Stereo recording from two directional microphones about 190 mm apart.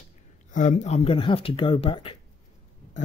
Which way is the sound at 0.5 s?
40° left (ahead or behind).